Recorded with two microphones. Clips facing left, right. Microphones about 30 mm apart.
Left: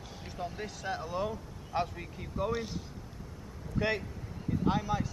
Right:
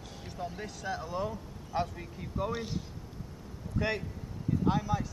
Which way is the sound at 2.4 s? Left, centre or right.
Centre.